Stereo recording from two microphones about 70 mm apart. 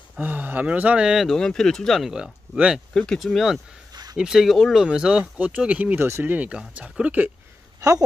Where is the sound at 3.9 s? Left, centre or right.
Right.